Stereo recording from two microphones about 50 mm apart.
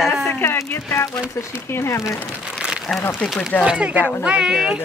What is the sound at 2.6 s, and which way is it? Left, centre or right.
Crumpling, centre.